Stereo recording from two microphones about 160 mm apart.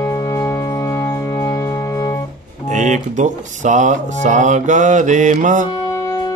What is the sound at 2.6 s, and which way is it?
Music, 50° right (ahead or behind).